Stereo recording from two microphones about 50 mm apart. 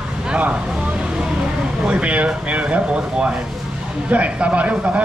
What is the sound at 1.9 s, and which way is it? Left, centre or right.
Speech, right.